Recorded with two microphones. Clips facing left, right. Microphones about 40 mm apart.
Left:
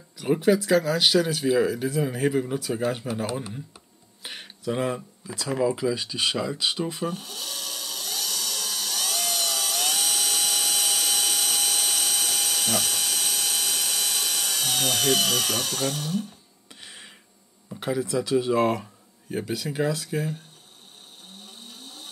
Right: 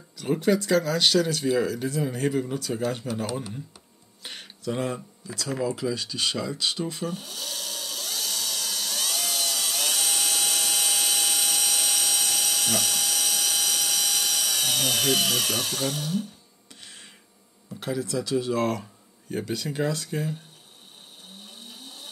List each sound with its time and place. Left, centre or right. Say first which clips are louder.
0.2 s speech: left 2 dB; centre
8.2 s tools: even; centre
16.8 s a sound: left 3 dB; centre
17.6 s speech: left 2 dB; centre